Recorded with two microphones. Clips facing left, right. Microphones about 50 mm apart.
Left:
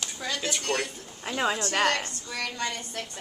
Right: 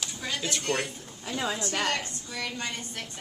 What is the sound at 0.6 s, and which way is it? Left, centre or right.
Speech, centre.